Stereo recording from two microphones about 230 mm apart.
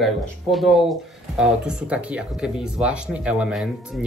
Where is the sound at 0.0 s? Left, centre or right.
Centre.